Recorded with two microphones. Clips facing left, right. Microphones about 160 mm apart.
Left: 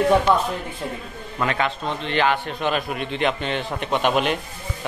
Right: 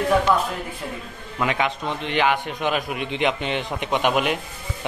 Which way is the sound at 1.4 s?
15° right (ahead or behind).